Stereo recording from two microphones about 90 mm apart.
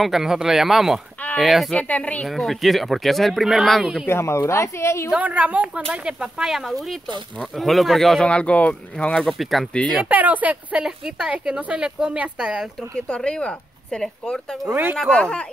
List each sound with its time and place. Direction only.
0.0 s speech: 5° right (ahead or behind)
1.7 s a woman's voice: 15° left (ahead or behind)
2.2 s speech: centre (ahead or behind)
4.1 s speech: 30° left (ahead or behind)
5.1 s speech: 15° right (ahead or behind); by 8.3 s centre (ahead or behind)
8.3 s a woman's voice: 15° left (ahead or behind)
9.9 s speech: 15° right (ahead or behind)
12.9 s a woman's voice: 10° left (ahead or behind)
14.7 s speech: 25° right (ahead or behind)
15.0 s a woman's voice: 10° left (ahead or behind)